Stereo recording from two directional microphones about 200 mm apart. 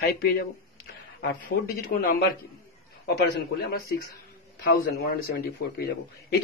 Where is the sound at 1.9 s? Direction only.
50° left (ahead or behind).